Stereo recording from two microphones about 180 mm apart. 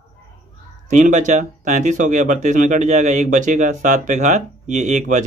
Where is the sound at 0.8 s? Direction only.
45° right (ahead or behind).